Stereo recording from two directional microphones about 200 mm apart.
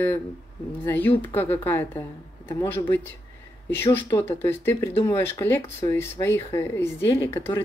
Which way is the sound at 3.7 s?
10° left (ahead or behind).